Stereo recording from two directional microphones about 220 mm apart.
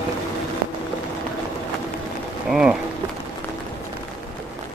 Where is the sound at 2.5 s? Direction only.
5° right (ahead or behind).